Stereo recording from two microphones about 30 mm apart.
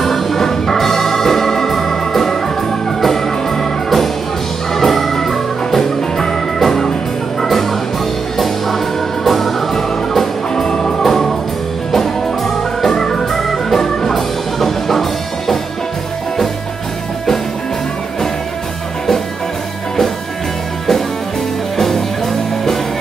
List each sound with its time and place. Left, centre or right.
0.0 s organ: centre
3.0 s music: centre
8.4 s music: centre
10.5 s music: left
11.9 s organ: centre
13.3 s organ: centre
13.7 s music: centre
21.7 s music: centre